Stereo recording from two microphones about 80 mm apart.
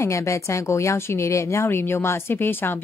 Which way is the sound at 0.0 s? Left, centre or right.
Left.